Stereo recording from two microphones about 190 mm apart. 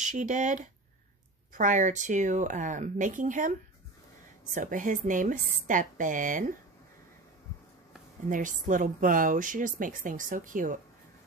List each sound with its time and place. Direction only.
0.0 s speech: 40° right (ahead or behind)
4.6 s a woman's voice: 45° right (ahead or behind)
8.3 s a woman's voice: 45° right (ahead or behind)